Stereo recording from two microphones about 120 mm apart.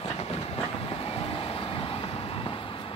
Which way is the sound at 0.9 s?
50° left (ahead or behind).